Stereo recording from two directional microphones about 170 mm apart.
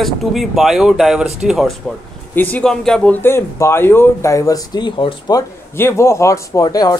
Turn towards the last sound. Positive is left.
turn(degrees=20)  # may be behind; listen again after turning